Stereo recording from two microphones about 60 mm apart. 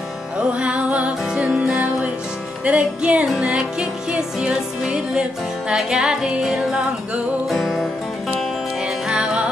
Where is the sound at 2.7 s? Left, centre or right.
Right.